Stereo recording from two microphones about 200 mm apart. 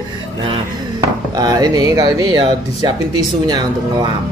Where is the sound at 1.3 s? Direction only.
20° right (ahead or behind).